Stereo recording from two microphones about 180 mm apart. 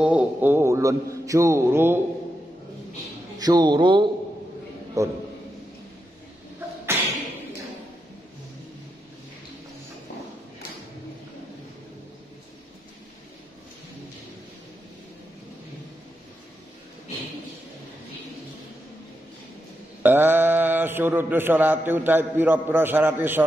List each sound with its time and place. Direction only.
0.0 s a man's voice: 5° right (ahead or behind)
3.3 s a man's voice: 25° right (ahead or behind)
20.0 s mantra: 10° right (ahead or behind)